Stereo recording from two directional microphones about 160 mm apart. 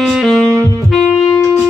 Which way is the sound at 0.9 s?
Centre (ahead or behind).